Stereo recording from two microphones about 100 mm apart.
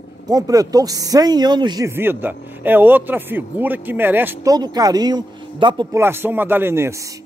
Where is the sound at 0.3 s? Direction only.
35° right (ahead or behind).